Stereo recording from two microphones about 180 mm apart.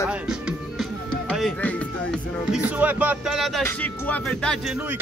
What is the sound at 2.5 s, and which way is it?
Speech, 10° right (ahead or behind).